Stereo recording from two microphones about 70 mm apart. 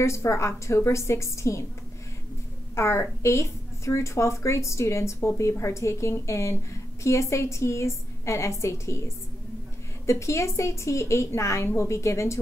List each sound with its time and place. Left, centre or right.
0.0 s a woman's voice: left
2.7 s a woman's voice: left